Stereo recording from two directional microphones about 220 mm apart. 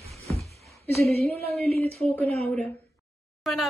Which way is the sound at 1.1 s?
30° right (ahead or behind).